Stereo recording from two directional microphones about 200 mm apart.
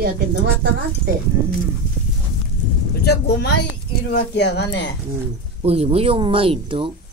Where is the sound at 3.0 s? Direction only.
55° left (ahead or behind).